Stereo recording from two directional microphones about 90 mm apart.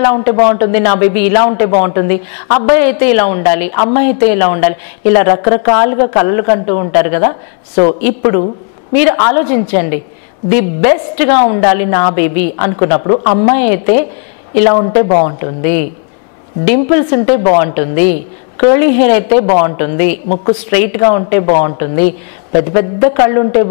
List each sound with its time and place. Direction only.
0.0 s a woman's voice: 20° left (ahead or behind)